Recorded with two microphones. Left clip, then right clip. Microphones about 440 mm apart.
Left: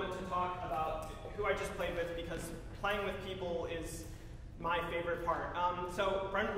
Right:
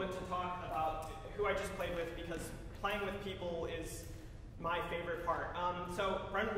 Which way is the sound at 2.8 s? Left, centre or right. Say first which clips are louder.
Left 2 dB; centre.